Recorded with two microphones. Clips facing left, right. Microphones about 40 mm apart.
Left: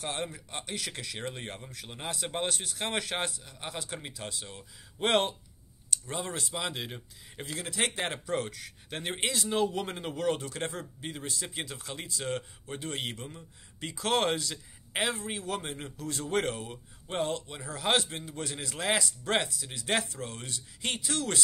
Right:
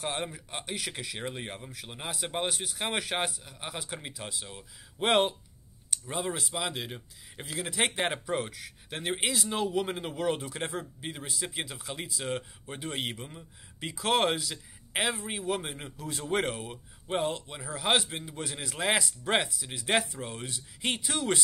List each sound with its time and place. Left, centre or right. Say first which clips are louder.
0.0 s speech: right 1 dB; centre